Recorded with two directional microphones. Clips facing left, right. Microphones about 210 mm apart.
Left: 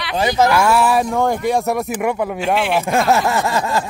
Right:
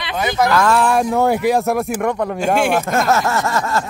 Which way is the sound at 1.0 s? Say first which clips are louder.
Right 2 dB; 5° right (ahead or behind).